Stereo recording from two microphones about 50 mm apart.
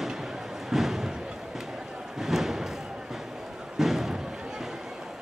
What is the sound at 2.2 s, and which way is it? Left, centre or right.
Thump, centre.